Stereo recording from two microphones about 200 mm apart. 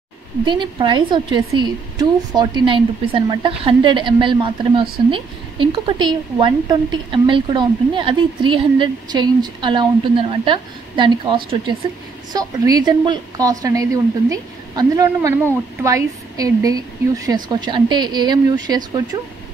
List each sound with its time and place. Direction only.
0.5 s a woman's voice: 25° right (ahead or behind)